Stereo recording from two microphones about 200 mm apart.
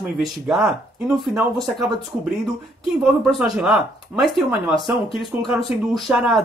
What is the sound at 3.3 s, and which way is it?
Speech, centre (ahead or behind).